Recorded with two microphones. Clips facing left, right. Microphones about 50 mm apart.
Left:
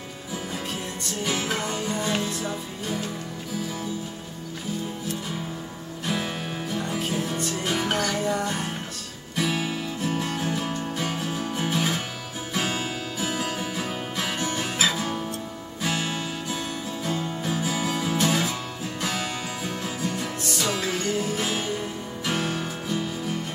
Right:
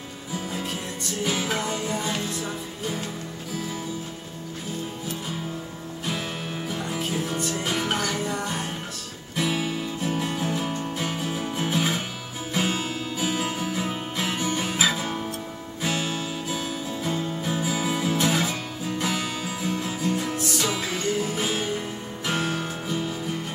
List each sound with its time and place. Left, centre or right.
1.2 s music: centre
6.0 s music: centre
20.7 s music: centre
21.2 s music: centre